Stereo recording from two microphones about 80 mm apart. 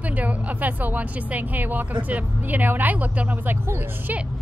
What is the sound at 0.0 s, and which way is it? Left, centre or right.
Speech, centre.